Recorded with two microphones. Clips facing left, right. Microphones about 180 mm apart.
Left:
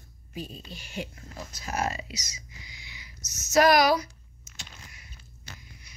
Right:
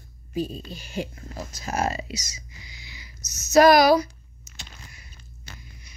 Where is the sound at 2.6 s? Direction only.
35° right (ahead or behind).